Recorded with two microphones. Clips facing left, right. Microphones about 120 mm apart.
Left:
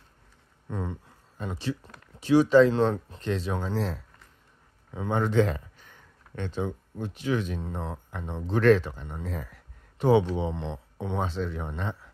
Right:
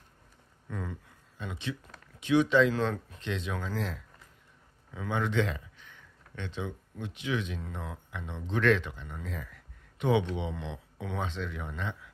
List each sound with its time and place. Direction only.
0.7 s speech: 30° left (ahead or behind)